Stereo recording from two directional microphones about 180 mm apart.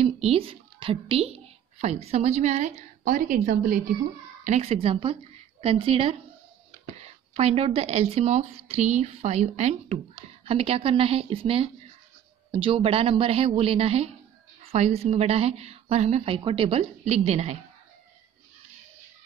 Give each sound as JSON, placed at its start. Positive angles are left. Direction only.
{"t": 0.0, "sound": "a woman's voice", "side_deg": -30}
{"t": 4.5, "sound": "a woman's voice", "side_deg": -35}